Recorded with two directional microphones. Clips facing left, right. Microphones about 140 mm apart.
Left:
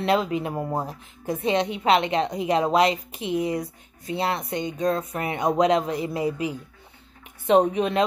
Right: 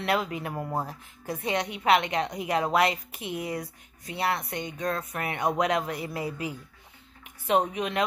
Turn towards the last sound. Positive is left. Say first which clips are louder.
# left 6 dB
turn(degrees=35)  # may be behind; listen again after turning